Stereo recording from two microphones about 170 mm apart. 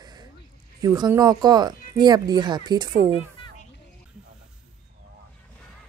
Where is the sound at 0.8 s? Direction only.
20° right (ahead or behind).